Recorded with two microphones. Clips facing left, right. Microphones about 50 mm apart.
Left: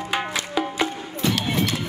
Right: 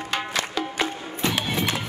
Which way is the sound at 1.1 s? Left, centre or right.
Right.